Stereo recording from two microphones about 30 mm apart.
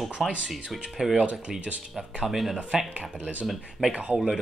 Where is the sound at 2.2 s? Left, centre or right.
Centre.